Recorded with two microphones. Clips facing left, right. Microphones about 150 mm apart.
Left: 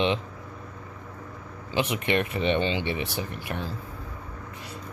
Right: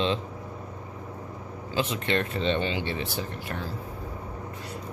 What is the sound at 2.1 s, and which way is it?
Speech, 15° left (ahead or behind).